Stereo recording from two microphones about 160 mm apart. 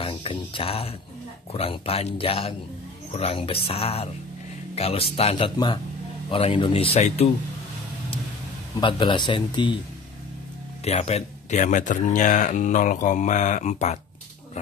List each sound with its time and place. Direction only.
0.0 s speech: 35° left (ahead or behind)
8.7 s speech: 30° left (ahead or behind)
10.8 s speech: 40° left (ahead or behind)